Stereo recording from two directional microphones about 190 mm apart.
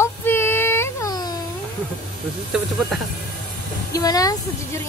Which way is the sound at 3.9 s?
20° left (ahead or behind).